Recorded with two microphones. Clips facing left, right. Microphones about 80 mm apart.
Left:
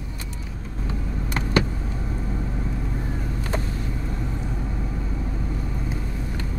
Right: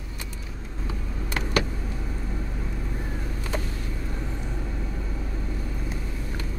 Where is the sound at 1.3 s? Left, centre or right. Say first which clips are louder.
Left 3 dB; left.